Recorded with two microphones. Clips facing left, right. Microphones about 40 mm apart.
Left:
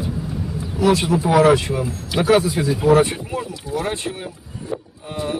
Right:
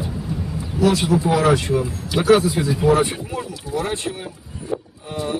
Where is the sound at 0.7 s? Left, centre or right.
Left.